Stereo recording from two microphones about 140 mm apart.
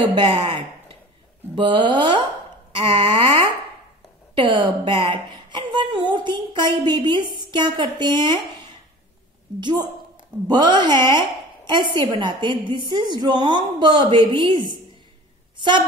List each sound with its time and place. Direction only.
0.0 s a woman's voice: 35° right (ahead or behind)
9.6 s a woman's voice: 35° right (ahead or behind)